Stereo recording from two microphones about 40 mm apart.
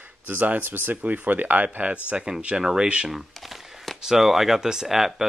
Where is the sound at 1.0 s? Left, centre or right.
Right; by 2.9 s centre.